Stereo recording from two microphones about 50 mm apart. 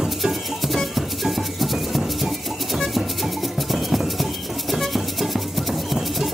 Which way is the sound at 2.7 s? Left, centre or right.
Centre.